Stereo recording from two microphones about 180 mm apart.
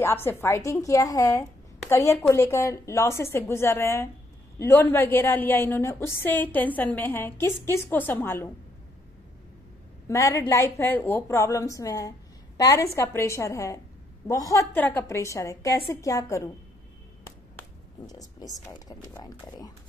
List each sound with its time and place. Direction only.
0.0 s a woman's voice: 10° left (ahead or behind)
10.0 s a woman's voice: 15° left (ahead or behind)
18.0 s speech: 20° left (ahead or behind)